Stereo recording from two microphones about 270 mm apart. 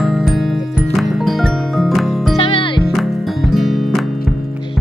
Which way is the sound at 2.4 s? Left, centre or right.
Centre.